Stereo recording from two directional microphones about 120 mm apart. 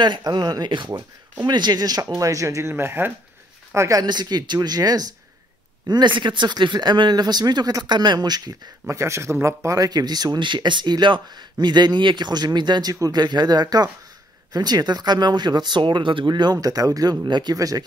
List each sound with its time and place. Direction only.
0.0 s speech: 40° right (ahead or behind)
4.0 s speech: 35° right (ahead or behind)